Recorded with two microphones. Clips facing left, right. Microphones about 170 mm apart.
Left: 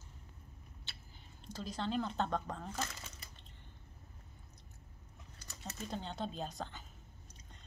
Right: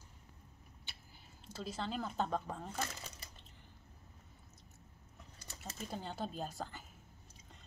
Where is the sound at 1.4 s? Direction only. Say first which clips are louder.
Left 1 dB; 5° right (ahead or behind).